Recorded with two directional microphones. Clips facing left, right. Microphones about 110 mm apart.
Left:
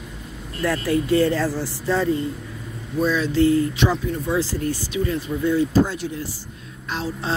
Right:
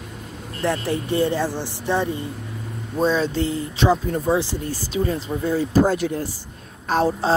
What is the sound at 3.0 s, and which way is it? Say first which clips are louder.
Speech: left 1 dB; 30° right (ahead or behind).